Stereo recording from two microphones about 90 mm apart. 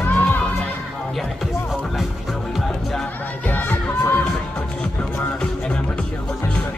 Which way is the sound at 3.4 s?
20° left (ahead or behind).